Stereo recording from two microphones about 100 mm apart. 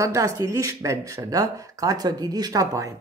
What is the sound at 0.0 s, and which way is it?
Speech, 30° right (ahead or behind).